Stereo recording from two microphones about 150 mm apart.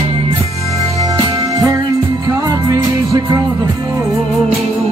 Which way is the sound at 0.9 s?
25° right (ahead or behind).